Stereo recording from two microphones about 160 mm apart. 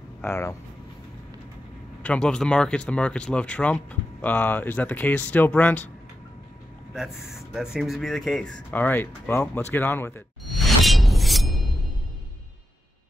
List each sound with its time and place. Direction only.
0.2 s speech: 15° left (ahead or behind)
2.0 s speech: 5° left (ahead or behind)
6.9 s speech: 5° right (ahead or behind); by 10.2 s 15° left (ahead or behind)
10.4 s shatter: centre (ahead or behind)